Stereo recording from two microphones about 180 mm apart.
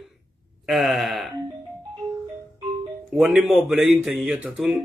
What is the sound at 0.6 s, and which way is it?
Speech, centre (ahead or behind).